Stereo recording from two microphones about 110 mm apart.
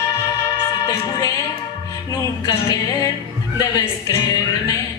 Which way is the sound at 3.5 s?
30° left (ahead or behind).